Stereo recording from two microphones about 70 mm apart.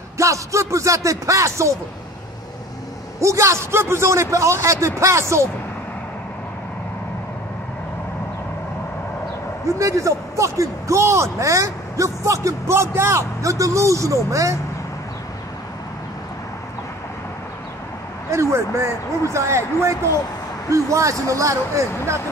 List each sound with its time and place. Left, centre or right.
0.2 s speech: right
3.2 s speech: right
9.8 s speech: right
18.3 s speech: right